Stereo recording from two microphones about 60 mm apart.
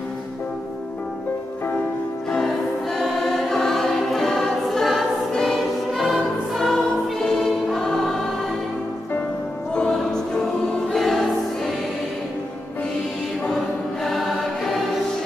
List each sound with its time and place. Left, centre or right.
2.3 s choir: centre
9.8 s music: centre
14.0 s choir: centre